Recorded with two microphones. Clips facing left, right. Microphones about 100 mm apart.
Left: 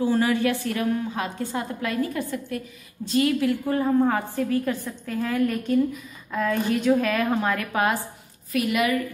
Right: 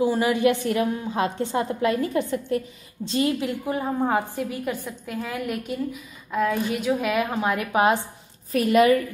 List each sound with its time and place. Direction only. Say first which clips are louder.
0.0 s a woman's voice: right 1 dB; 15° right (ahead or behind)
8.5 s a woman's voice: right 6 dB; 35° right (ahead or behind)